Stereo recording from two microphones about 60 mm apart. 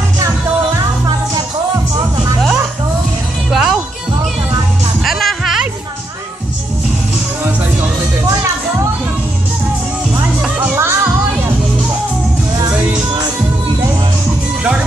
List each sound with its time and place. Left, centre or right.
3.4 s music: centre
5.0 s music: centre
10.6 s music: right
14.6 s music: centre